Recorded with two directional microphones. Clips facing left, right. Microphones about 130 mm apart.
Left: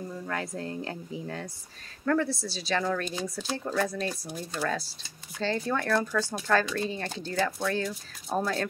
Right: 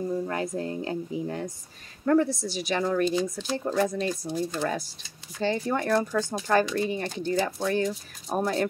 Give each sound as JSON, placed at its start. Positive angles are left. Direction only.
{"t": 0.3, "sound": "a woman's voice", "side_deg": -20}